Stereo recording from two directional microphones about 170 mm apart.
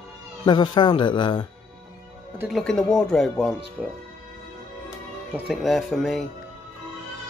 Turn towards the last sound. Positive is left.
turn(degrees=0)  # may be behind; listen again after turning